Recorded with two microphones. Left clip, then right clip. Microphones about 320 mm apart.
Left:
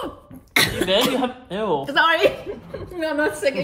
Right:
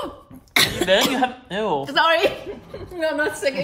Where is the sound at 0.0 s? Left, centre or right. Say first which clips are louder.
Even; centre.